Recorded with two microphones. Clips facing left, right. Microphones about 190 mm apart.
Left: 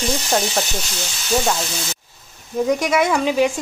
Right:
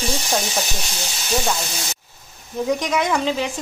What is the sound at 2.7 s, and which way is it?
Speech, 10° left (ahead or behind).